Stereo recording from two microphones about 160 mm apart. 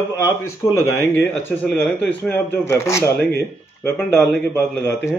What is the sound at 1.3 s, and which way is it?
A man's voice, 5° left (ahead or behind).